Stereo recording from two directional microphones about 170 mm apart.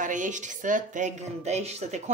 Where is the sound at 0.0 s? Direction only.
50° right (ahead or behind).